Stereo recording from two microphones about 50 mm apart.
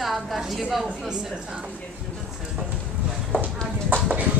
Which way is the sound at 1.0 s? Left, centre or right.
Centre.